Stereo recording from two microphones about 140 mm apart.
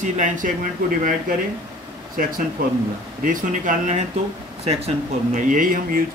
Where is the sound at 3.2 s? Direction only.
75° right (ahead or behind).